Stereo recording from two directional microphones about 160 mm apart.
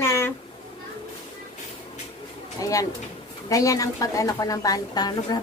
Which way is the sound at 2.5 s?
20° left (ahead or behind).